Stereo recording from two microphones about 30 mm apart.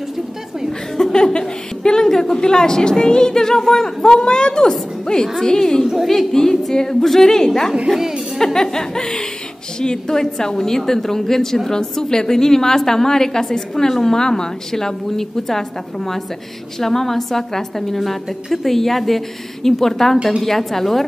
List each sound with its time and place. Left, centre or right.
1.1 s a woman's voice: left
16.8 s a woman's voice: centre